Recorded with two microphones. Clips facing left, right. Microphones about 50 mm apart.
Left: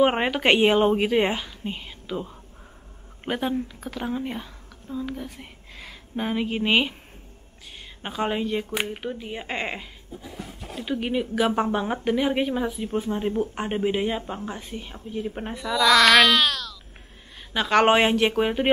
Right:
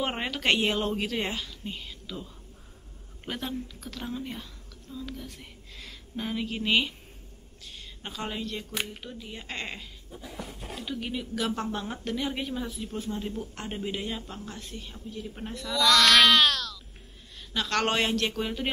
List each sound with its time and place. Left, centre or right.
0.0 s a woman's voice: left
10.9 s speech: left
15.0 s speech: left
15.5 s speech: centre
17.5 s speech: centre